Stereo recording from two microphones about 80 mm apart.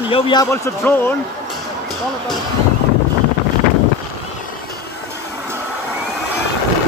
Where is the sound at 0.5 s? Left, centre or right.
Left.